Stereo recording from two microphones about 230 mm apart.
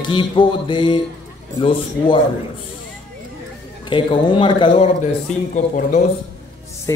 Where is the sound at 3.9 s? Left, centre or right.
Left.